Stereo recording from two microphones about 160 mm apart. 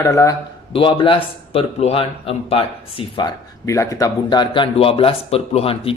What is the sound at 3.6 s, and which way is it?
Speech, 20° left (ahead or behind).